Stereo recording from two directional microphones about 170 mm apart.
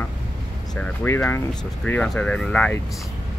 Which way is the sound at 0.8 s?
10° left (ahead or behind).